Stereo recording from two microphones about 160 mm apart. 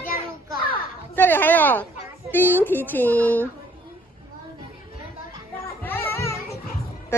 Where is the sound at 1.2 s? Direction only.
15° left (ahead or behind).